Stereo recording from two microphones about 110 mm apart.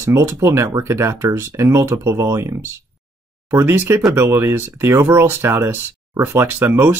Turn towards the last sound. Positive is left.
turn(degrees=-20)  # may be behind; listen again after turning